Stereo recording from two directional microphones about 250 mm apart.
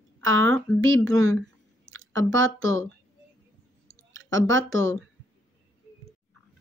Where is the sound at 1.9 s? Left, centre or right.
Right.